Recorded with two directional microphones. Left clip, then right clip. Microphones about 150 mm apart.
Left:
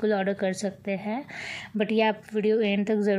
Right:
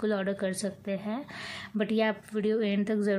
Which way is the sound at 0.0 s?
10° left (ahead or behind).